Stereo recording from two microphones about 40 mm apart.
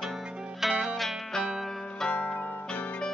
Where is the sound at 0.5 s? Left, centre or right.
Centre.